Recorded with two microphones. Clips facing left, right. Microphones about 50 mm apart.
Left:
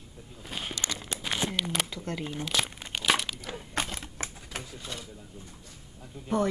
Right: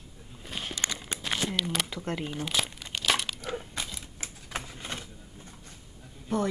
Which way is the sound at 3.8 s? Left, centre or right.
Left.